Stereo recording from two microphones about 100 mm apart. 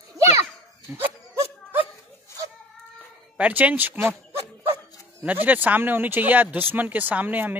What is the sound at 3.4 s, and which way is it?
Speech, 15° right (ahead or behind).